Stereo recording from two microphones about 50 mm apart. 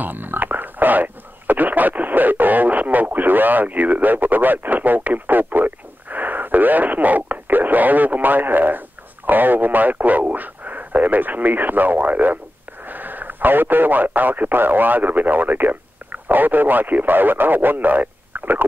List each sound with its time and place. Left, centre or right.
0.0 s speech: right